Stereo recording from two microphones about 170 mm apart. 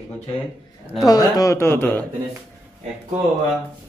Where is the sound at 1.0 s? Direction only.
20° left (ahead or behind).